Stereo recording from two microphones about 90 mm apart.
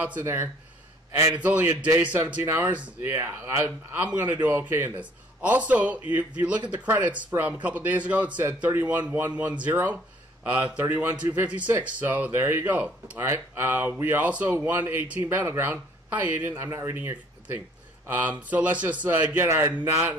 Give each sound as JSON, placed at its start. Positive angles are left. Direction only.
{"t": 0.0, "sound": "a man's voice", "side_deg": -20}
{"t": 2.4, "sound": "a man's voice", "side_deg": -30}
{"t": 19.3, "sound": "a man's voice", "side_deg": -30}